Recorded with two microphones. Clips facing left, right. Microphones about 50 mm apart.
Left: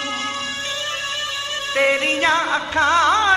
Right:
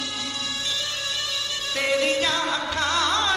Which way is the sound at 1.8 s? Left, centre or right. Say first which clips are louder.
Left 5 dB; left.